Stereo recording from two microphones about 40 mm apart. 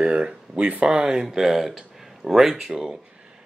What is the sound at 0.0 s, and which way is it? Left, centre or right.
Speech, right.